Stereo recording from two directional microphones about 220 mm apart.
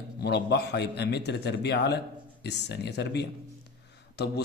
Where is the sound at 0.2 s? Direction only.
50° left (ahead or behind).